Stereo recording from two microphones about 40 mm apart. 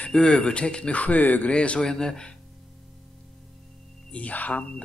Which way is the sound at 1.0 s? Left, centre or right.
Left.